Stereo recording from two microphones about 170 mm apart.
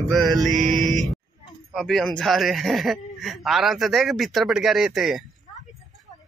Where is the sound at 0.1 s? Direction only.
Centre (ahead or behind).